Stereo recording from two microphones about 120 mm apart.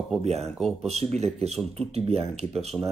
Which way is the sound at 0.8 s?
65° right (ahead or behind).